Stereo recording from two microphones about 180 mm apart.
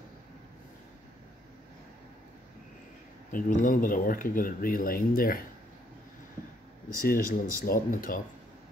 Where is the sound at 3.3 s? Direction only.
50° left (ahead or behind).